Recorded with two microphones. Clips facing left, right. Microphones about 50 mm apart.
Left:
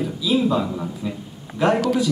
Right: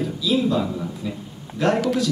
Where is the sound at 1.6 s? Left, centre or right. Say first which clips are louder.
Left 2 dB; centre.